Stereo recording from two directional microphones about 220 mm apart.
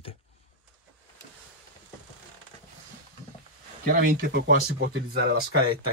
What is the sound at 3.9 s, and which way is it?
Speech, 45° right (ahead or behind).